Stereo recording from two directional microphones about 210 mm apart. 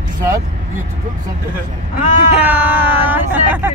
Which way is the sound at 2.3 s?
5° right (ahead or behind).